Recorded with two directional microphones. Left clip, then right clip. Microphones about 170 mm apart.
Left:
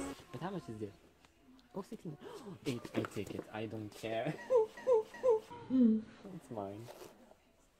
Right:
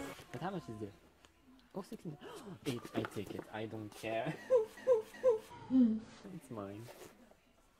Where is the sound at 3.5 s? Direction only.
55° left (ahead or behind).